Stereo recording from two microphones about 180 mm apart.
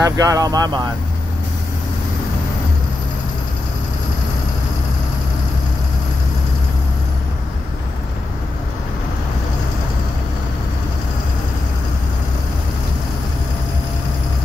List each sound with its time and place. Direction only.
0.0 s speech: 20° right (ahead or behind)